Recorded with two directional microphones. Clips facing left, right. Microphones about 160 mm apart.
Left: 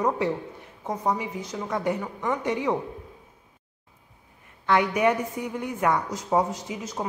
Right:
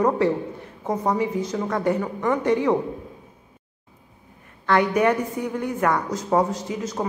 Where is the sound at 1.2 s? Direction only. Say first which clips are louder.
Right 8 dB; 10° left (ahead or behind).